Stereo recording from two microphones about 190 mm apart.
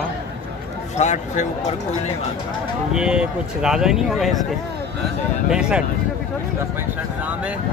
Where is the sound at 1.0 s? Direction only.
40° left (ahead or behind).